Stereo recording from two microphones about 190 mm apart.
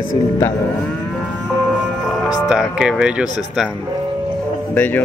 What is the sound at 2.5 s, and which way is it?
Speech, 5° right (ahead or behind).